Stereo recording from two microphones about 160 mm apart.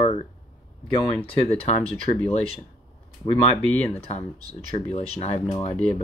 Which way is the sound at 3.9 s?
40° left (ahead or behind).